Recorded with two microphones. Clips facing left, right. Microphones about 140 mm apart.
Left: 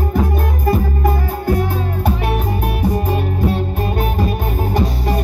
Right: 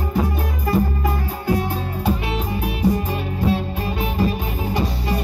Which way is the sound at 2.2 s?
55° left (ahead or behind).